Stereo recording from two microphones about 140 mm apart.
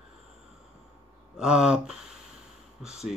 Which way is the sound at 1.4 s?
5° right (ahead or behind).